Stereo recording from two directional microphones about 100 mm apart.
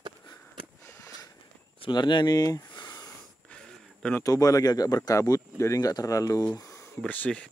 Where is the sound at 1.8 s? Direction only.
50° left (ahead or behind).